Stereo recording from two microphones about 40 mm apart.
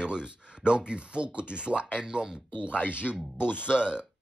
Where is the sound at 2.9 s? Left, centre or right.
Right.